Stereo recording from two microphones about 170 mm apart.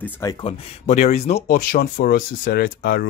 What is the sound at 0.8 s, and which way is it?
Speech, 45° left (ahead or behind).